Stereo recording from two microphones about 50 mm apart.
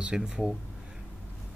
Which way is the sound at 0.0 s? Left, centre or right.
Centre.